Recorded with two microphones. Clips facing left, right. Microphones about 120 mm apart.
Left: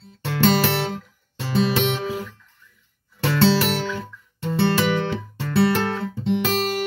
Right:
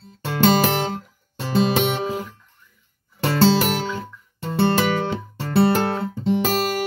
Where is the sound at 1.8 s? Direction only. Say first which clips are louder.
Right 1 dB; 50° right (ahead or behind).